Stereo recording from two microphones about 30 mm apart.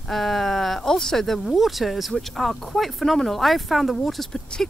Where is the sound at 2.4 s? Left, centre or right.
Centre.